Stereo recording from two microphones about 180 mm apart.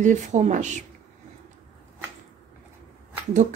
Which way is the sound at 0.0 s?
40° right (ahead or behind).